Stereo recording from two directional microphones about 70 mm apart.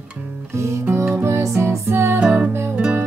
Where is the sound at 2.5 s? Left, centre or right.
Right.